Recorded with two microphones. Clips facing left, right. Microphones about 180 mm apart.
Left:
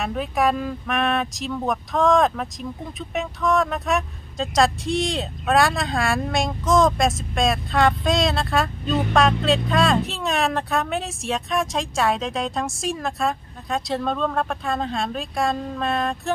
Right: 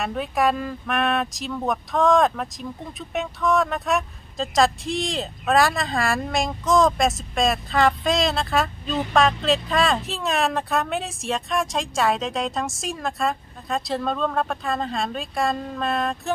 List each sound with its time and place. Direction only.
0.0 s speech: centre (ahead or behind)